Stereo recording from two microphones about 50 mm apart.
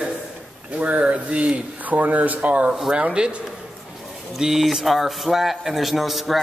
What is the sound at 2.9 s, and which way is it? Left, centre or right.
Speech, centre.